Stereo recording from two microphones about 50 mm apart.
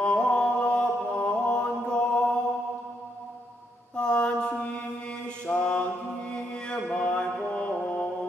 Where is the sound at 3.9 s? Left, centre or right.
Centre.